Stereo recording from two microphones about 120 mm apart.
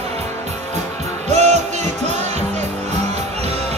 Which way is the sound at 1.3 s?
70° right (ahead or behind).